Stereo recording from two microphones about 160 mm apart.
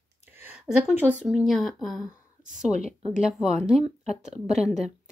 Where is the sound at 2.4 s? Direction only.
50° right (ahead or behind).